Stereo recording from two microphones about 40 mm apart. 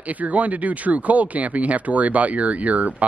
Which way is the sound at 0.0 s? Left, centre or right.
Right.